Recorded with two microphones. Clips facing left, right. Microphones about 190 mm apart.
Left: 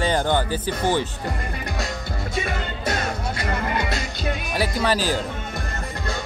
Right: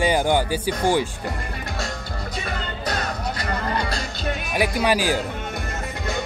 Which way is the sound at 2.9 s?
25° left (ahead or behind).